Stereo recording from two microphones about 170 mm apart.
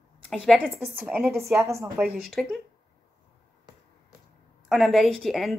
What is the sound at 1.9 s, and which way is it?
Speech, 5° right (ahead or behind).